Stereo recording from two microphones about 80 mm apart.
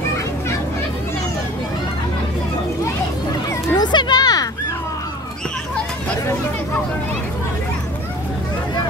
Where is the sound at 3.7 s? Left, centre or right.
Left.